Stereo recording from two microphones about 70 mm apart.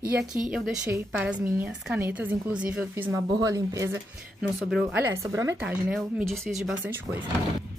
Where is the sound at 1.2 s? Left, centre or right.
Right.